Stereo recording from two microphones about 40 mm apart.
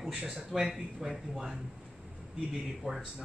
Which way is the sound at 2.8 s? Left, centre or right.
Centre.